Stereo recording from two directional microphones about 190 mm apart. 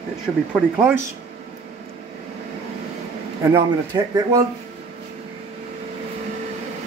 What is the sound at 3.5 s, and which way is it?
Speech, 20° right (ahead or behind).